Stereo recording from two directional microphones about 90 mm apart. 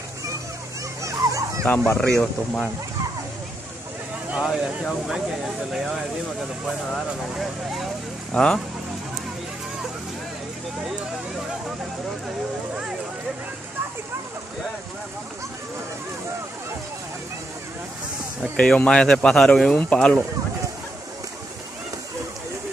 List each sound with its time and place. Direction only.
1.0 s dog: 35° right (ahead or behind)
1.9 s speech: 10° left (ahead or behind)
4.3 s speech: 10° right (ahead or behind)
8.3 s speech: 10° left (ahead or behind)
18.4 s speech: 10° left (ahead or behind)